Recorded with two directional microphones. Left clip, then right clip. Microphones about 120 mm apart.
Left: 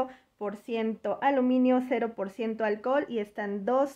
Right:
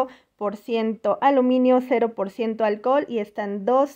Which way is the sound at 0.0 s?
45° right (ahead or behind).